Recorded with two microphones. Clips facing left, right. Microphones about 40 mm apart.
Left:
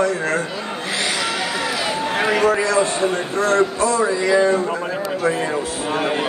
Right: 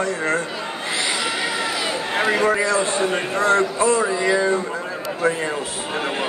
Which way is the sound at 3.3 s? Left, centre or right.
Right.